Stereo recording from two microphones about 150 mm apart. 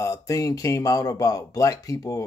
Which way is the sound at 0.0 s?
20° left (ahead or behind).